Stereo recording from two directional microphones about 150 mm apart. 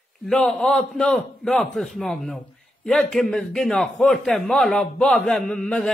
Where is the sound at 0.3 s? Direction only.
5° left (ahead or behind).